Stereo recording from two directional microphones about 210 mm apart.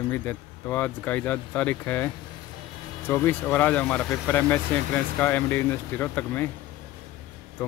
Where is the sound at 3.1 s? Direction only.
10° left (ahead or behind).